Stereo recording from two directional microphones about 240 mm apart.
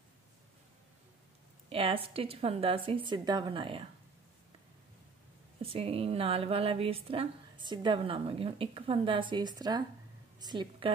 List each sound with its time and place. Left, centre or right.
1.7 s a woman's voice: right
5.6 s a woman's voice: right